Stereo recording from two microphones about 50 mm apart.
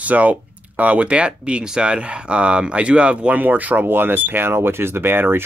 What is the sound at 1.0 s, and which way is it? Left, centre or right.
Speech, right.